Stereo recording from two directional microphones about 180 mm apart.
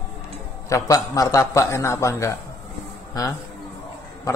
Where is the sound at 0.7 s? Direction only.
15° left (ahead or behind).